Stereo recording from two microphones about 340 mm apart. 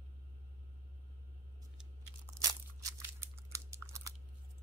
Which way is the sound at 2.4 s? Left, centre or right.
Centre.